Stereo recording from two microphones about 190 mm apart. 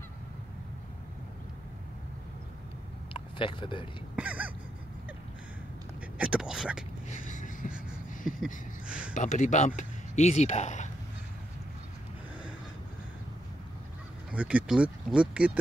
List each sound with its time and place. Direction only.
3.1 s vehicle: 25° left (ahead or behind)
4.2 s a sound: 5° right (ahead or behind)
6.1 s speech: 5° right (ahead or behind)
7.1 s vehicle: 40° left (ahead or behind)
8.8 s speech: 5° right (ahead or behind)
9.1 s speech: 40° left (ahead or behind)
14.3 s speech: 5° right (ahead or behind)